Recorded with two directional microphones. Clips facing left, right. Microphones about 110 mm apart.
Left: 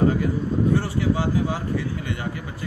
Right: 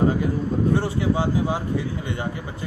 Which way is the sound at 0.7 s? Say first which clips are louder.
Right 1 dB; 20° right (ahead or behind).